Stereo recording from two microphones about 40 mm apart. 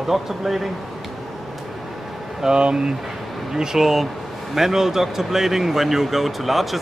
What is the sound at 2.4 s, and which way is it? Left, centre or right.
Speech, right.